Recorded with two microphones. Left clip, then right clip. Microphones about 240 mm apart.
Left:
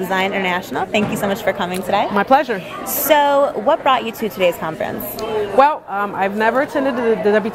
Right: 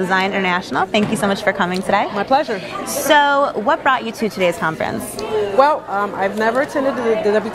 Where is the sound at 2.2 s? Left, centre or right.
Left.